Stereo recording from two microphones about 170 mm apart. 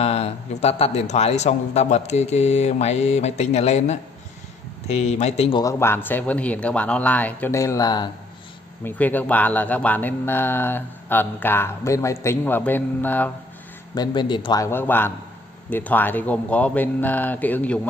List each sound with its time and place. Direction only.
0.0 s a man's voice: 40° left (ahead or behind)
5.6 s speech: 15° left (ahead or behind)
8.8 s speech: 10° left (ahead or behind)
13.9 s a man's voice: 25° left (ahead or behind); by 17.7 s 10° left (ahead or behind)